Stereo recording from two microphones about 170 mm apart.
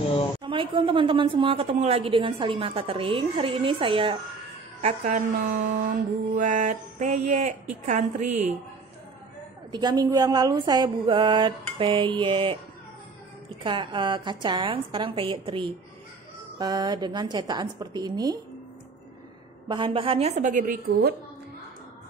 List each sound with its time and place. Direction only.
0.4 s a woman's voice: 30° right (ahead or behind)
4.8 s mantra: 45° right (ahead or behind)
9.7 s speech: 25° right (ahead or behind)
13.7 s speech: 25° right (ahead or behind)
19.7 s a woman's voice: 30° right (ahead or behind); by 21.1 s 55° right (ahead or behind)